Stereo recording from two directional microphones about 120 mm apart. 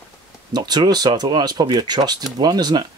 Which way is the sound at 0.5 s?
35° right (ahead or behind).